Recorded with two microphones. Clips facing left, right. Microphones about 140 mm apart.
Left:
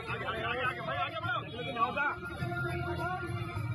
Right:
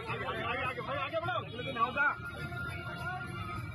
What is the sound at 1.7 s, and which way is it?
Speech, 20° left (ahead or behind).